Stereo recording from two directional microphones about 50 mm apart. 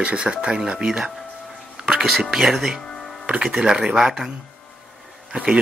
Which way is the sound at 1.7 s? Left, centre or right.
Centre.